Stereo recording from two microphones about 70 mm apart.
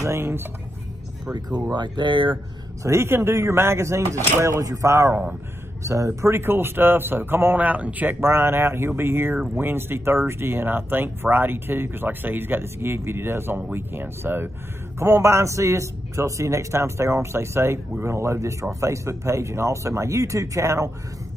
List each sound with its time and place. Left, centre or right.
0.0 s speech: right
1.3 s speech: right
2.8 s speech: right
8.2 s speech: right
15.0 s speech: right